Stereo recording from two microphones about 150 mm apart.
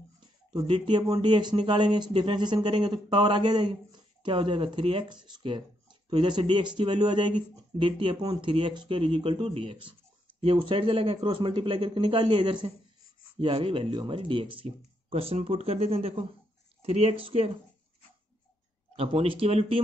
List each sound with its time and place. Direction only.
0.5 s speech: 35° right (ahead or behind)
18.9 s speech: 40° right (ahead or behind)